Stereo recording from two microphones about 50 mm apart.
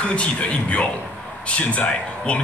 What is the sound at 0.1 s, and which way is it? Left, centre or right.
Speech, left.